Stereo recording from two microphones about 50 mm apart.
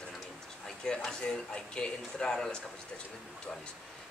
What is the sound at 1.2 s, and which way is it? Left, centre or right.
Speech, centre.